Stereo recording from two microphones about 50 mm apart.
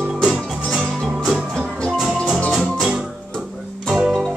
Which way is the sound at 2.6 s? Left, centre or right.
Centre.